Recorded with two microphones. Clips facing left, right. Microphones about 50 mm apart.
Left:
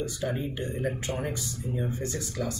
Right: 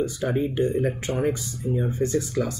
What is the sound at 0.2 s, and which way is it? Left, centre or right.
Speech, right.